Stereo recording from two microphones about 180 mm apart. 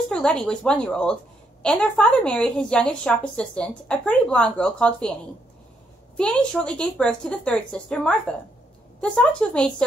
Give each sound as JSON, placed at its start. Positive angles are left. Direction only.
{"t": 0.1, "sound": "a woman's voice", "side_deg": 5}
{"t": 6.1, "sound": "a woman's voice", "side_deg": 5}